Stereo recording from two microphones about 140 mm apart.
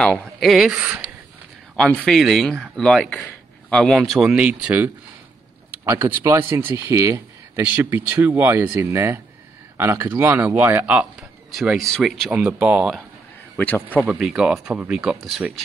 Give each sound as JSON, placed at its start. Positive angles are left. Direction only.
{"t": 0.0, "sound": "speech", "side_deg": 5}
{"t": 13.6, "sound": "a man's voice", "side_deg": 15}
{"t": 14.0, "sound": "speech", "side_deg": -5}